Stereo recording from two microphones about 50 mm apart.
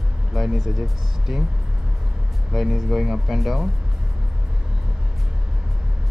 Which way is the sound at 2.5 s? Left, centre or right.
Centre.